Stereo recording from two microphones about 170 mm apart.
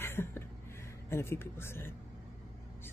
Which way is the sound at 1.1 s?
15° left (ahead or behind).